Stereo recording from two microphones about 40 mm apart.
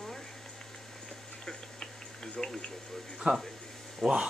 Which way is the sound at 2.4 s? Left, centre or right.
Centre.